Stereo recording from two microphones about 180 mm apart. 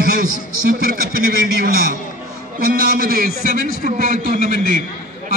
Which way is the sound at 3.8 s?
45° right (ahead or behind).